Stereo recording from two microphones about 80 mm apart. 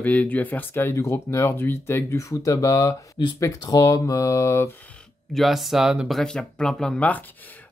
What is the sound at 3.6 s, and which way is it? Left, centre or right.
Mantra, left.